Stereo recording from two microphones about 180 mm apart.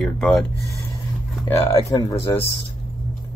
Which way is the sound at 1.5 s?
15° left (ahead or behind).